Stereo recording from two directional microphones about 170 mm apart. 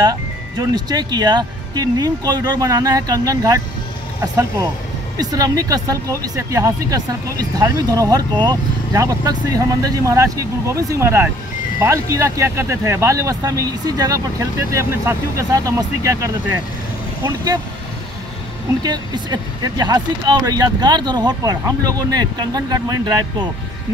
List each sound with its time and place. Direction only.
0.0 s speech: 20° right (ahead or behind)
5.2 s speech: 20° right (ahead or behind)
18.8 s speech: 25° right (ahead or behind)